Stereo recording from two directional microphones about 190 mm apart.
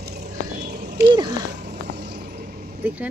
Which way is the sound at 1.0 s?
20° right (ahead or behind).